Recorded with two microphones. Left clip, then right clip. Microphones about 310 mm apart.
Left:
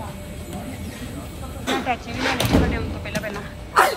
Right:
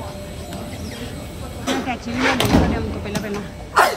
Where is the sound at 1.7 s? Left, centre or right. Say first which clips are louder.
Even; centre.